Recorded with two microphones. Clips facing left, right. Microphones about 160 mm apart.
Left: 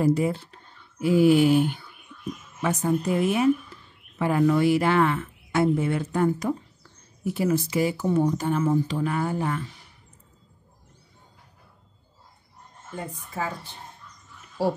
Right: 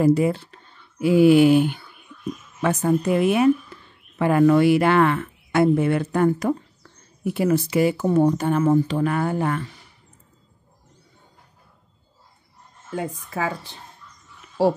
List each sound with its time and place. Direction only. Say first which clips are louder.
0.0 s speech: right 4 dB; 75° right (ahead or behind)
12.9 s a woman's voice: right 6 dB; 90° right